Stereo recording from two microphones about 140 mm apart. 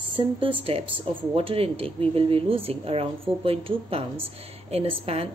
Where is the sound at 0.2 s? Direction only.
35° right (ahead or behind).